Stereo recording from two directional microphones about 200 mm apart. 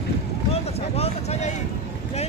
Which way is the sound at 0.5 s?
30° left (ahead or behind).